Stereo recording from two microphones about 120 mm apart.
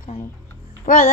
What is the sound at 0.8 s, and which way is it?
Speech, 90° left.